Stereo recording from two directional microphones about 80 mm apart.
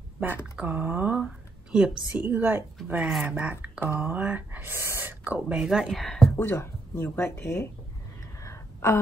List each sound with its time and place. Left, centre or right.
0.6 s speech: right
1.2 s a sound: centre
2.1 s speech: centre
3.0 s speech: centre; by 5.1 s right
5.2 s speech: centre
5.6 s speech: centre
6.3 s speech: left
8.8 s speech: left